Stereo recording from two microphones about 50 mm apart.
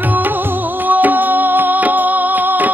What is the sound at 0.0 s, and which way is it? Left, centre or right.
Music, right.